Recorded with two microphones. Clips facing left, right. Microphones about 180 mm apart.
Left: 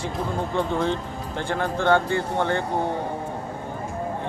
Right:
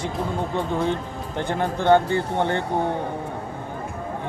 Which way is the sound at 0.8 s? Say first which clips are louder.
Right 1 dB; 15° right (ahead or behind).